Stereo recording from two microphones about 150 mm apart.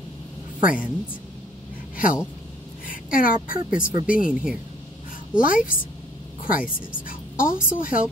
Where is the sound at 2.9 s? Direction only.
65° left (ahead or behind).